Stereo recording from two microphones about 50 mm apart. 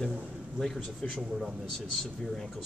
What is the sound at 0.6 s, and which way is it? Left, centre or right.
A man's voice, centre.